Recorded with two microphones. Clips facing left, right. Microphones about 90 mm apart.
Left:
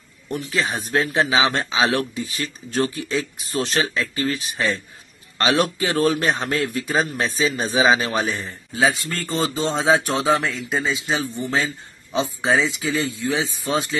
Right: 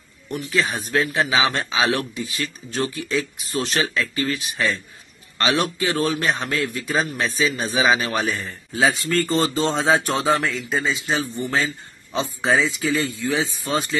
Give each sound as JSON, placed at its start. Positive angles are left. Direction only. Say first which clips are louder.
{"t": 0.3, "sound": "a man's voice", "louder": "right 1 dB", "side_deg": 35}
{"t": 8.7, "sound": "speech", "louder": "right 1 dB", "side_deg": 0}
{"t": 10.7, "sound": "a man's voice", "louder": "left 1 dB", "side_deg": 10}